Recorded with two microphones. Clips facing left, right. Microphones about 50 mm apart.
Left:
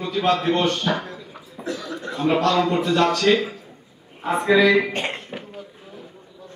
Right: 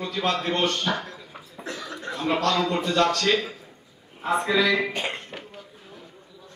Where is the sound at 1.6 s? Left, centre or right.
Right.